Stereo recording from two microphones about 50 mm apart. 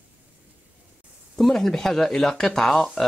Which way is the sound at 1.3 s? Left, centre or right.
Centre.